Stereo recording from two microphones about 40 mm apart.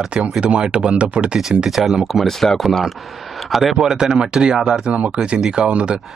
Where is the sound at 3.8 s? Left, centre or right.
Centre.